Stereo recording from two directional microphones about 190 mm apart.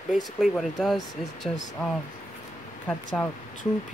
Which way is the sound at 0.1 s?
Centre (ahead or behind).